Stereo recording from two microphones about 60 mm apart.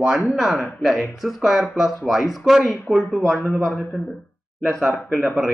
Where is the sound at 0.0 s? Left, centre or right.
Centre.